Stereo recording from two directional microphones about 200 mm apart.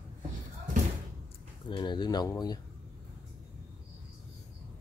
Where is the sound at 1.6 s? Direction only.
25° left (ahead or behind).